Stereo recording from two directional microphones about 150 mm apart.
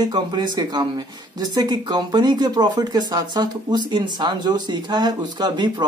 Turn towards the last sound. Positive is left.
turn(degrees=-30)  # may be behind; listen again after turning